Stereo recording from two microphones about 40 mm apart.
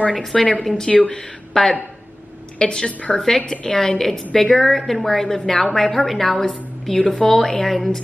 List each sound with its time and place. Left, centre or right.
0.1 s a woman's voice: centre
0.9 s speech: left
1.5 s speech: centre
2.9 s a woman's voice: left
3.3 s a woman's voice: centre
4.6 s a woman's voice: centre
7.2 s a woman's voice: centre